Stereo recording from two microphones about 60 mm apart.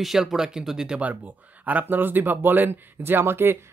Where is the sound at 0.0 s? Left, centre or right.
Centre.